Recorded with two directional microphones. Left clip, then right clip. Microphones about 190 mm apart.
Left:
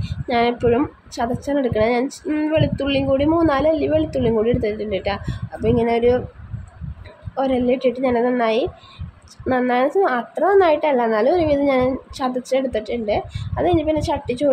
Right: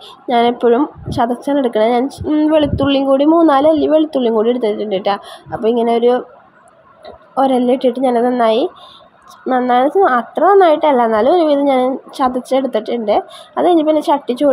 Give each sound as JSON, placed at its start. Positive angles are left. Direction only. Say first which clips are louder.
{"t": 0.0, "sound": "a woman's voice", "louder": "right 6 dB", "side_deg": -15}
{"t": 2.5, "sound": "a woman's voice", "louder": "right 5 dB", "side_deg": -20}
{"t": 7.3, "sound": "a woman's voice", "louder": "right 6 dB", "side_deg": -20}